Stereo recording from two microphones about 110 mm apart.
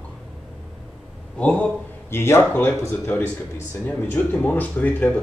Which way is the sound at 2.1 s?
20° left (ahead or behind).